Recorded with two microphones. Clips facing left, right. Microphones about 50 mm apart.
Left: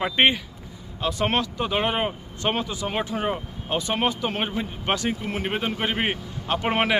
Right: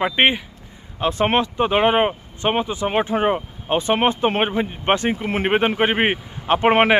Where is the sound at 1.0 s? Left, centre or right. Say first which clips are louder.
Right 5 dB; right.